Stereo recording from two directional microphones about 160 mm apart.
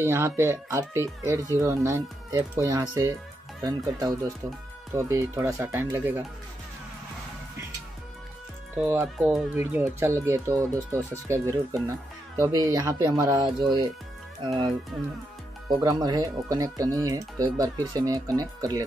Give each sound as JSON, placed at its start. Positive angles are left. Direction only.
{"t": 0.0, "sound": "speech", "side_deg": -15}
{"t": 8.7, "sound": "speech", "side_deg": -10}
{"t": 15.8, "sound": "speech", "side_deg": -25}